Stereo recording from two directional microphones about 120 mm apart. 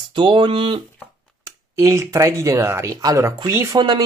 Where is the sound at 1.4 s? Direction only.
25° right (ahead or behind).